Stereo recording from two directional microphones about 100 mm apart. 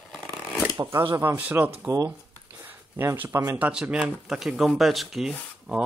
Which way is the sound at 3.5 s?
10° right (ahead or behind).